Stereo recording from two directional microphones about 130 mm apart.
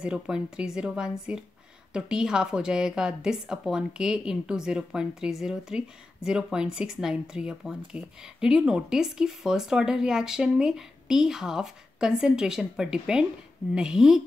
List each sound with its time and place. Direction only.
0.0 s a woman's voice: 5° right (ahead or behind)